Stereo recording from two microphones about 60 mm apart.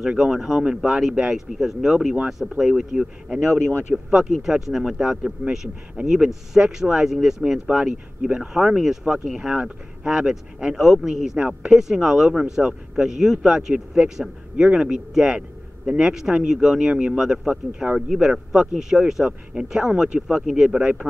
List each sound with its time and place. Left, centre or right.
0.2 s speech: centre
11.3 s speech: centre